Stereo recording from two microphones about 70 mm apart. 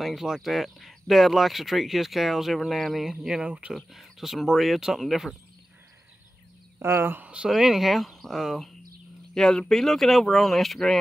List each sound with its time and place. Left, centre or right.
0.0 s speech: centre
3.7 s speech: centre
6.8 s speech: right
7.4 s speech: centre